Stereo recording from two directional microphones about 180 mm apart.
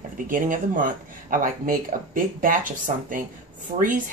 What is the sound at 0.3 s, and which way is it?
Speech, 45° right (ahead or behind).